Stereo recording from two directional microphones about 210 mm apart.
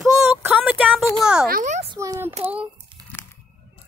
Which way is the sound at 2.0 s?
15° right (ahead or behind).